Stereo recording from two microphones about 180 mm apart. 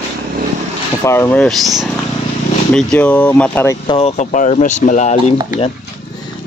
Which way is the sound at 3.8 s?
35° left (ahead or behind).